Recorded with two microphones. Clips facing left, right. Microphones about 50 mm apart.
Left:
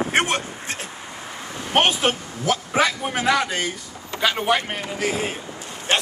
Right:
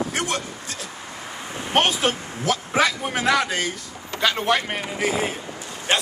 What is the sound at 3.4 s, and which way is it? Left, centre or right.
Speech, centre.